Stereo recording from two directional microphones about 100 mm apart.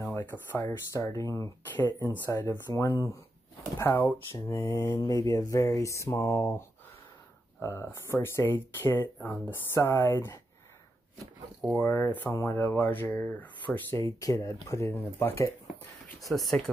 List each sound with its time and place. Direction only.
0.0 s speech: 20° left (ahead or behind)
1.6 s speech: 20° left (ahead or behind)
4.5 s a sound: 40° left (ahead or behind)
7.6 s speech: 25° left (ahead or behind)
11.7 s speech: 20° left (ahead or behind)
14.2 s a sound: 35° left (ahead or behind)
15.1 s speech: 25° left (ahead or behind)
16.3 s speech: 10° left (ahead or behind)